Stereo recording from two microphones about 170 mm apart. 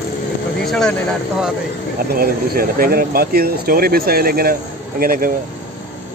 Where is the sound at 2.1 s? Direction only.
60° right (ahead or behind).